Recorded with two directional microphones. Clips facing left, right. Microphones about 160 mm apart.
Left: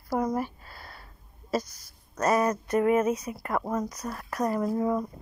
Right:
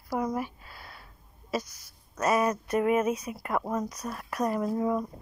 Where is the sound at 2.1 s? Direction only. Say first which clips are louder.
Left 1 dB; 10° right (ahead or behind).